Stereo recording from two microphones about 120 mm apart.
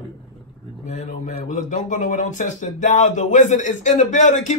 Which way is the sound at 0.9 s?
75° left (ahead or behind).